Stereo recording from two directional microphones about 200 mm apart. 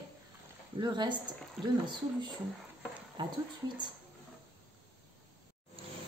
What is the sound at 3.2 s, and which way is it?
Speech, 20° right (ahead or behind).